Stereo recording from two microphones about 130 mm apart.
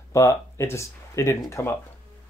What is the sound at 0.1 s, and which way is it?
Speech, 20° left (ahead or behind).